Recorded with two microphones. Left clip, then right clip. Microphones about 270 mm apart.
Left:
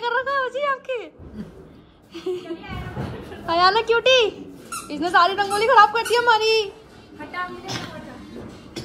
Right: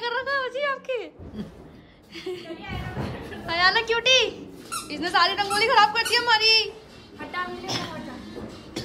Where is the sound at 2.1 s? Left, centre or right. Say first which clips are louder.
Left 5 dB; centre.